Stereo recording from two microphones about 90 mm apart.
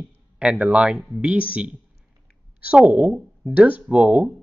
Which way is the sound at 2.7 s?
10° right (ahead or behind).